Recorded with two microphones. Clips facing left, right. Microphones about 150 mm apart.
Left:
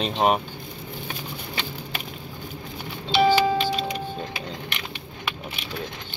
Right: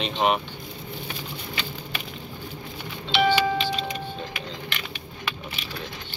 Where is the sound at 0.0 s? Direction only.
40° left (ahead or behind).